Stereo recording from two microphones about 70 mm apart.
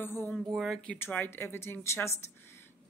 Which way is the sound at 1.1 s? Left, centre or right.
Left.